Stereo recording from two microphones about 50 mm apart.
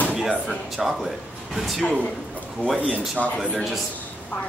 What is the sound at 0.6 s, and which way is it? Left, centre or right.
Speech, centre.